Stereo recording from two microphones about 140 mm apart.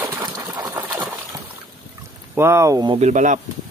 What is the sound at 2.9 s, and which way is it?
Speech, 55° right (ahead or behind).